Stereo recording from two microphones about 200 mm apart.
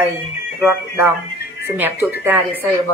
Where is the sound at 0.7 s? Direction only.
10° right (ahead or behind).